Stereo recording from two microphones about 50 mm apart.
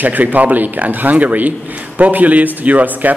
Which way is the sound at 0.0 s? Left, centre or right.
Right.